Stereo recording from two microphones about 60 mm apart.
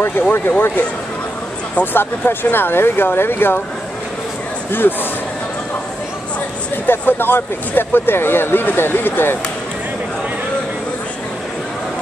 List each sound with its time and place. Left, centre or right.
0.3 s speech: left
2.0 s speech: left
4.6 s speech: left
6.9 s speech: left